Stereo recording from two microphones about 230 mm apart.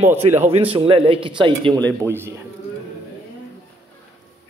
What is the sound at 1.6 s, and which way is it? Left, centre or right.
Speech, centre.